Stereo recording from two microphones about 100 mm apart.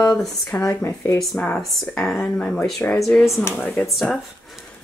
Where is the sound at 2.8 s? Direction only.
15° left (ahead or behind).